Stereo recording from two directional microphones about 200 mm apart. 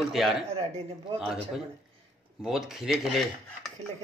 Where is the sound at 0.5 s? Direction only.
30° right (ahead or behind).